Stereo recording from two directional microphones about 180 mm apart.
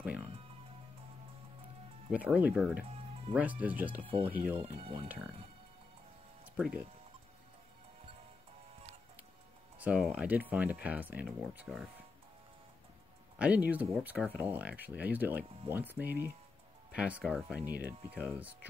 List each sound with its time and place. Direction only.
0.0 s music: 10° right (ahead or behind)
2.0 s speech: 5° right (ahead or behind)
4.6 s speech: 30° right (ahead or behind)
5.0 s speech: 10° right (ahead or behind)
6.4 s music: 10° right (ahead or behind)
9.8 s speech: 5° right (ahead or behind)
13.4 s speech: 10° right (ahead or behind)